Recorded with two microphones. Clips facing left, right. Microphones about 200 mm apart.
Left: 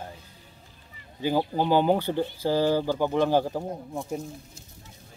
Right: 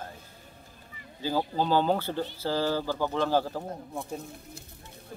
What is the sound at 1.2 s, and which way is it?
Speech, 15° left (ahead or behind).